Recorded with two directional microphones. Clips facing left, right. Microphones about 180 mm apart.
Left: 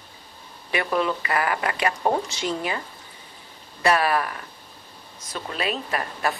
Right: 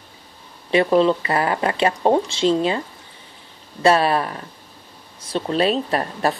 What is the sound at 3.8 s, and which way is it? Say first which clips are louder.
Speech: right 5 dB; 25° right (ahead or behind).